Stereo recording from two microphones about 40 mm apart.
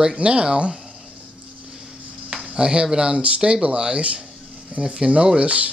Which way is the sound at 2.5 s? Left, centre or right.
Centre.